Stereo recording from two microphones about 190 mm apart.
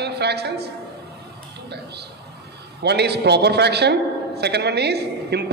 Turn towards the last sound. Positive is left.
turn(degrees=-60)  # may be behind; listen again after turning